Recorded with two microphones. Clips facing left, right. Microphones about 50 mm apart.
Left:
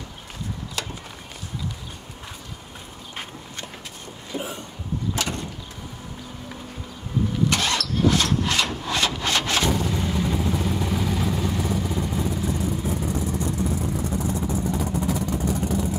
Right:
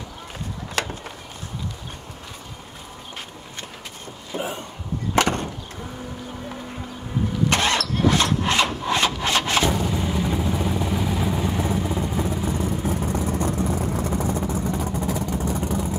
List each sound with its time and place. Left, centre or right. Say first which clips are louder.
0.8 s a sound: right 7 dB; right
4.4 s speech: right 3 dB; right
5.1 s vehicle: right 11 dB; right
7.4 s engine starting: right 5 dB; right
8.4 s wood: right 3 dB; right
9.8 s vehicle: right 1 dB; centre
12.6 s vehicle: right 1 dB; right